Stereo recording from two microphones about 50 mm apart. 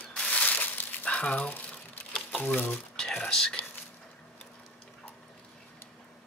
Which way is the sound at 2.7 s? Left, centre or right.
Centre.